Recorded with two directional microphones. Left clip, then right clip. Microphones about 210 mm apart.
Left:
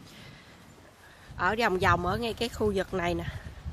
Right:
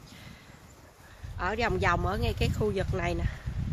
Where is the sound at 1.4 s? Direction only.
25° left (ahead or behind).